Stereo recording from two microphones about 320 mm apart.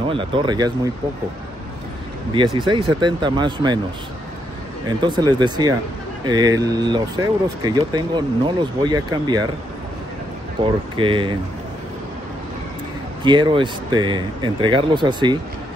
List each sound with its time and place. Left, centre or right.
0.1 s speech: centre
2.3 s speech: centre
5.0 s speech: centre
10.6 s speech: centre
13.2 s speech: centre